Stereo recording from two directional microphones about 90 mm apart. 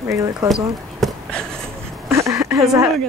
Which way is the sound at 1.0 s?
5° left (ahead or behind).